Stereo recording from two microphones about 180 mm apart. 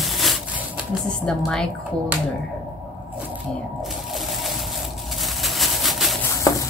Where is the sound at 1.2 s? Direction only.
Centre (ahead or behind).